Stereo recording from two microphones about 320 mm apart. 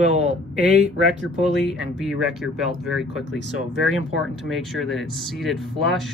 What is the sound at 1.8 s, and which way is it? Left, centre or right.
Speech, centre.